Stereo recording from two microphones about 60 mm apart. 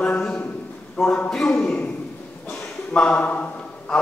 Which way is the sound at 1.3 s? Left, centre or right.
Centre.